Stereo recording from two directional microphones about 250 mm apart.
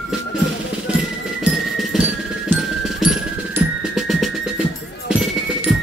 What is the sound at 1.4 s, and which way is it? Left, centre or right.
Music, centre.